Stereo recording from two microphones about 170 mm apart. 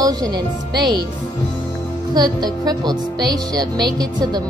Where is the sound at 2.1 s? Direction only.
25° right (ahead or behind).